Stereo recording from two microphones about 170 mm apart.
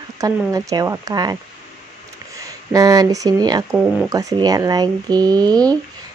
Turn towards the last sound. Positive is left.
turn(degrees=-25)  # may be behind; listen again after turning